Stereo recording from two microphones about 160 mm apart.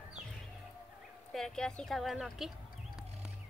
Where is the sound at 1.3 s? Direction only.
5° left (ahead or behind).